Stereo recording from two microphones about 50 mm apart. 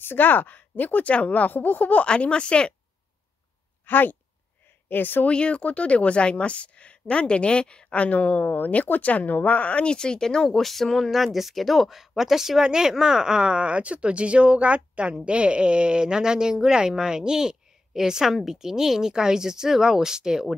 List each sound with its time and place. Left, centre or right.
0.0 s speech: left
2.0 s speech: left
3.8 s speech: left
5.2 s speech: left; by 20.4 s centre